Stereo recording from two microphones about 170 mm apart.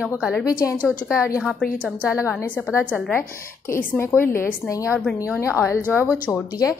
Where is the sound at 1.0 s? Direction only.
15° left (ahead or behind).